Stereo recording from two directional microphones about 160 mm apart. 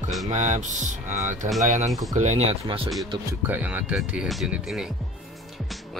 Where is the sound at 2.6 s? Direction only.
35° right (ahead or behind).